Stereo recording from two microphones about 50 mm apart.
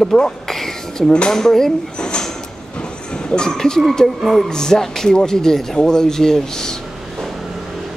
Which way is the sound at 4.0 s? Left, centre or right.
Centre.